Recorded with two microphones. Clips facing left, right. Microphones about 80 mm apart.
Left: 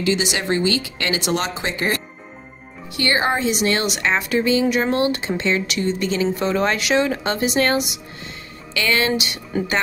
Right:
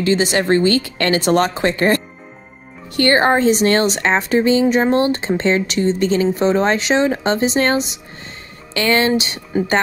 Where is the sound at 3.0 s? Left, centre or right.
Right.